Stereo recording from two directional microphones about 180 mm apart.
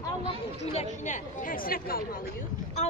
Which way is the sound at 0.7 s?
45° left (ahead or behind).